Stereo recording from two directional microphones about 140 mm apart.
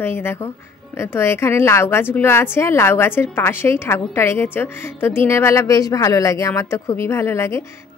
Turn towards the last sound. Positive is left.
turn(degrees=20)  # may be behind; listen again after turning